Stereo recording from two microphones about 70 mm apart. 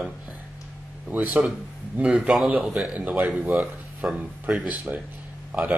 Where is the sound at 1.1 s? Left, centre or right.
Right.